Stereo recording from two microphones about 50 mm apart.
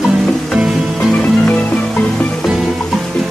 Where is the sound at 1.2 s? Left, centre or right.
Left.